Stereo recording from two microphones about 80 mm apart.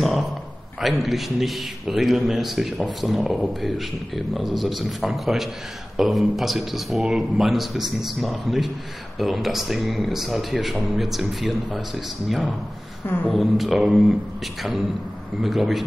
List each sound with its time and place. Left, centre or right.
0.7 s a man's voice: centre
13.0 s speech: left
13.3 s a man's voice: centre
15.4 s a man's voice: centre